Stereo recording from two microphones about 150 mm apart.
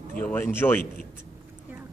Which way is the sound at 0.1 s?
10° left (ahead or behind).